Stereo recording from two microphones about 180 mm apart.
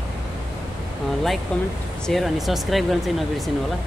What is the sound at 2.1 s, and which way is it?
Speech, centre (ahead or behind).